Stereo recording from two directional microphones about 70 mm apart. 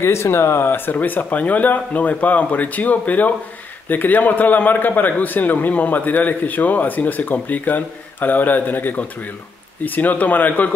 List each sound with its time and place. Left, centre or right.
0.0 s a man's voice: left